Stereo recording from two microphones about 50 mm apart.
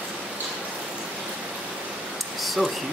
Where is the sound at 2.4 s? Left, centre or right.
Centre.